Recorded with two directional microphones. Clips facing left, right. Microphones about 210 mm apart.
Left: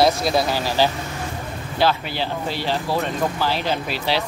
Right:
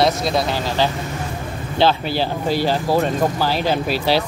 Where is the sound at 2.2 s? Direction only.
40° right (ahead or behind).